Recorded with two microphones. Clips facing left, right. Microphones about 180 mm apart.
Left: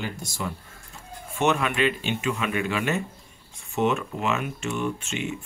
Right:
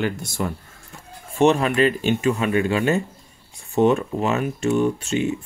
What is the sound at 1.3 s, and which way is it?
Speech, 35° right (ahead or behind).